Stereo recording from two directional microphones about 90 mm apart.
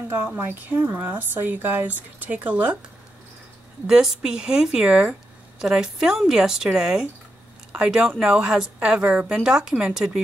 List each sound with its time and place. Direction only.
0.1 s a woman's voice: 25° right (ahead or behind)
3.8 s a woman's voice: 5° right (ahead or behind)